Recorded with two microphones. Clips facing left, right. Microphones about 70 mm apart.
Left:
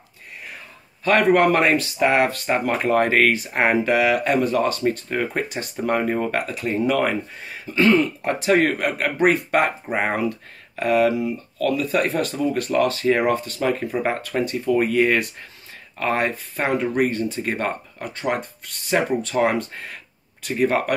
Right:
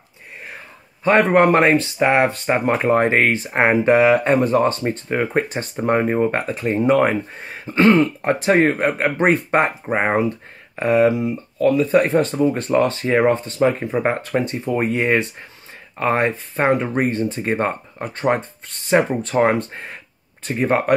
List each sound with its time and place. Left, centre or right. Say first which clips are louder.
1.3 s speech: right 3 dB; right